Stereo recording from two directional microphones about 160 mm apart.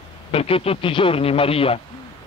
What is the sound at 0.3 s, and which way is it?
Speech, 35° left (ahead or behind).